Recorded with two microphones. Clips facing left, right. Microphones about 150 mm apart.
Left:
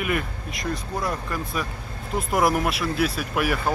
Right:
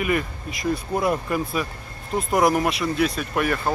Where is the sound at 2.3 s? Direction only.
Centre (ahead or behind).